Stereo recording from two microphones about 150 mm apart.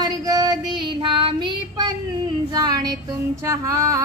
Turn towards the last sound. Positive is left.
turn(degrees=-20)  # may be behind; listen again after turning